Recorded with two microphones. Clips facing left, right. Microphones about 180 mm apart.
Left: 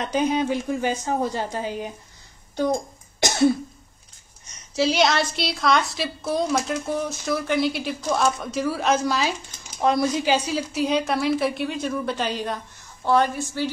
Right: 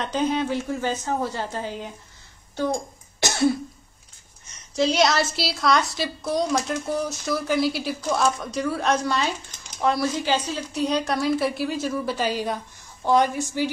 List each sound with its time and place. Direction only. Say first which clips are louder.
0.0 s a woman's voice: left 2 dB; 10° left (ahead or behind)
4.7 s a woman's voice: even; centre (ahead or behind)
9.8 s a woman's voice: left 2 dB; 15° left (ahead or behind); by 13.7 s 15° right (ahead or behind)